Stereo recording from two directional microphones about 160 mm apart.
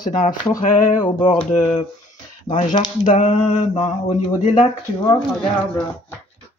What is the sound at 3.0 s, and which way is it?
Speech, 45° left (ahead or behind).